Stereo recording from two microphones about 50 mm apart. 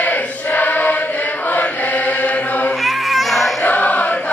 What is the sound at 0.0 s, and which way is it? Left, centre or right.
Chant, left.